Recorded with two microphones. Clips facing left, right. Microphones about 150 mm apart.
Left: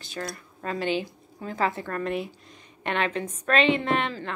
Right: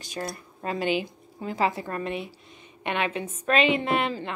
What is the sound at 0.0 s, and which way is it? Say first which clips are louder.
A woman's voice: right 1 dB; 20° right (ahead or behind).